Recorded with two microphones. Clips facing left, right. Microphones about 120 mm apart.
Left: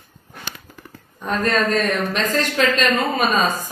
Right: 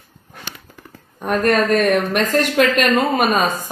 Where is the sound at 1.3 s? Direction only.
60° right (ahead or behind).